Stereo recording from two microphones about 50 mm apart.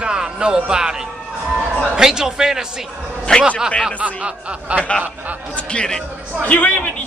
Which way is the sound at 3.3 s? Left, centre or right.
Centre.